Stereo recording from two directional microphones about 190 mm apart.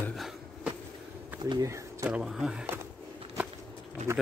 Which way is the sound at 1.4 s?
20° right (ahead or behind).